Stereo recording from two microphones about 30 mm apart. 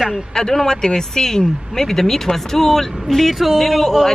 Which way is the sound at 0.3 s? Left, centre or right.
Centre.